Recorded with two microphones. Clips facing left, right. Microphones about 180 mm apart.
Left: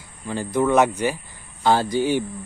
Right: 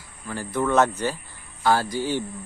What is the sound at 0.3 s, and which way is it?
Speech, 20° left (ahead or behind).